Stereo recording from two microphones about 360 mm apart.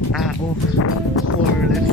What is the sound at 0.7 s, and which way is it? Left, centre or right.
Speech, left.